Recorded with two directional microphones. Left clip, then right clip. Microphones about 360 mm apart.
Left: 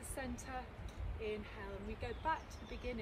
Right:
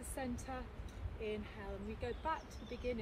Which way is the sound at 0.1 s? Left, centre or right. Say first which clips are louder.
Right 1 dB; centre.